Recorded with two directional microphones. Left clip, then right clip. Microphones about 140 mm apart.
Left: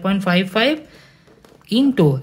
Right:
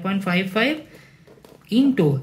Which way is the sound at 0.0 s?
60° left (ahead or behind).